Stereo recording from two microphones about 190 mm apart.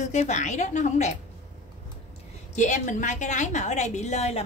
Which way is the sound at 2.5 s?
40° left (ahead or behind).